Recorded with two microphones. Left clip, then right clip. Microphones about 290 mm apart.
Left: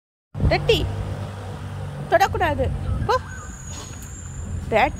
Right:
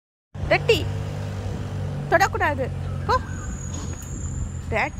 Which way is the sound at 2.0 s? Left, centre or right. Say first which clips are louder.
Left 1 dB; centre.